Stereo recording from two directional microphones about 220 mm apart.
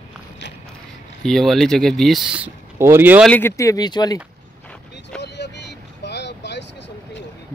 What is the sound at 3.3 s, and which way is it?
Speech, 10° left (ahead or behind).